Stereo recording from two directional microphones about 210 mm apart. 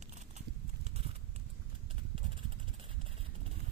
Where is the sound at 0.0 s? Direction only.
35° right (ahead or behind).